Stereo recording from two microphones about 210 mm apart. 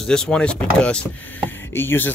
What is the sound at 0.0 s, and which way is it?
Speech, 5° left (ahead or behind).